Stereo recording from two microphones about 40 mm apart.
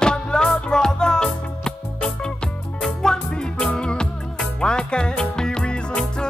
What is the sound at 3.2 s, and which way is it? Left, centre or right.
Music, left.